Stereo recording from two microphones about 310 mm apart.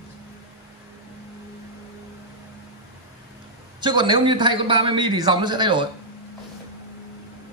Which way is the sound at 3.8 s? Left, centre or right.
Centre.